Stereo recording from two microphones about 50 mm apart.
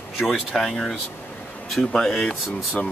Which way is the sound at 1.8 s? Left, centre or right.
Centre.